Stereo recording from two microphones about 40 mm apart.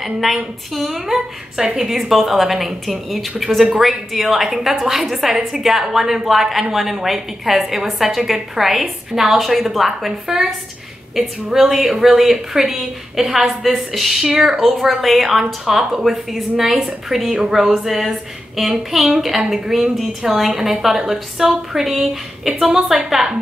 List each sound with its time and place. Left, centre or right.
0.0 s a woman's voice: centre
3.4 s a woman's voice: centre
14.2 s a woman's voice: centre
14.6 s a woman's voice: centre